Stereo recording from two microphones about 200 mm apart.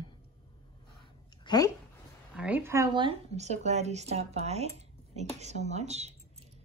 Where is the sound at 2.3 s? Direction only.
5° right (ahead or behind); by 6.1 s 35° right (ahead or behind).